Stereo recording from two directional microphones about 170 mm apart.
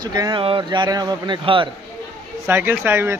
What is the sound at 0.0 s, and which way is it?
Speech, 25° right (ahead or behind).